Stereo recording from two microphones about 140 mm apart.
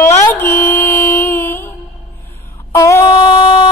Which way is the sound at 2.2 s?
15° left (ahead or behind).